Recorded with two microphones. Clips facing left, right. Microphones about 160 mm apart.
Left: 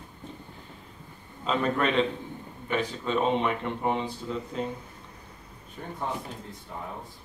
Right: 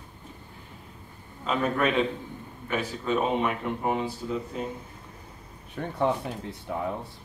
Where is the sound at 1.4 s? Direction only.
5° right (ahead or behind).